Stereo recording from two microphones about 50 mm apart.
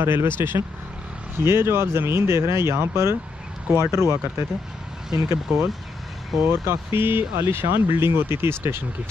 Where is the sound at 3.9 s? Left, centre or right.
Right.